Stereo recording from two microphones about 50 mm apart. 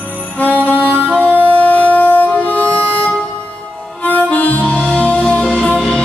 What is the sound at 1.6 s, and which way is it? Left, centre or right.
Music, left.